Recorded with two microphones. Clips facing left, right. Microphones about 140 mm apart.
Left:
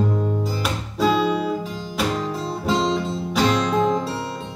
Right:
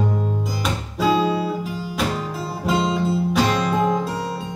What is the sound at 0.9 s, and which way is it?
Guitar, 10° right (ahead or behind).